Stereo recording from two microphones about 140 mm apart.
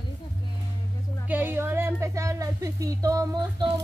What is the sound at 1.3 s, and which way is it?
Speech, 15° right (ahead or behind).